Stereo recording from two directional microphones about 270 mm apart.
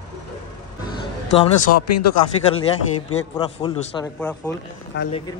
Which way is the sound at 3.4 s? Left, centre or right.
Centre.